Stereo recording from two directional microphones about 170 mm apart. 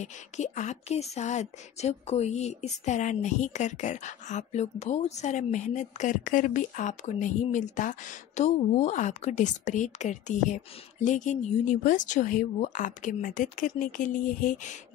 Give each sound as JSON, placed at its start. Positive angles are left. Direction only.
{"t": 0.0, "sound": "a woman's voice", "side_deg": 45}